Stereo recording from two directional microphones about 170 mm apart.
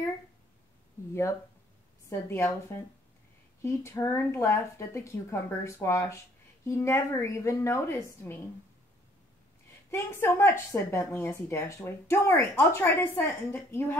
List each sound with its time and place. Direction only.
2.0 s a woman's voice: 15° left (ahead or behind)
9.8 s a woman's voice: 15° left (ahead or behind)